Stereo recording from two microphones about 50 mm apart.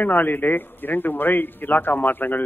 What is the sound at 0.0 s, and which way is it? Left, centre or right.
A man's voice, left.